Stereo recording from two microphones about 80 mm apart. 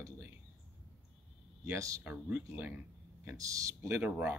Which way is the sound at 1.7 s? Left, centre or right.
Right.